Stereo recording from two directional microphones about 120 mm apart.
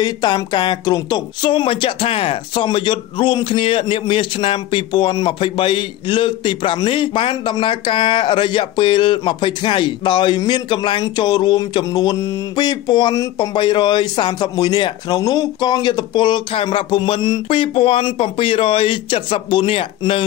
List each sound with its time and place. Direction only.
0.0 s a man's voice: 35° left (ahead or behind)